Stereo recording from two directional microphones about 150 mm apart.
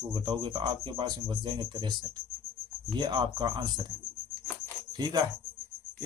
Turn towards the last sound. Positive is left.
turn(degrees=-30)  # may be behind; listen again after turning